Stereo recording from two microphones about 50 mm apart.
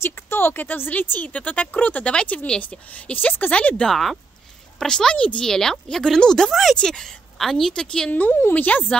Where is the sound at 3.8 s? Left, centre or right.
Centre.